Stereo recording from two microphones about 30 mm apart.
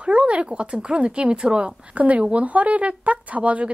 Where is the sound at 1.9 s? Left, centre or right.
Right.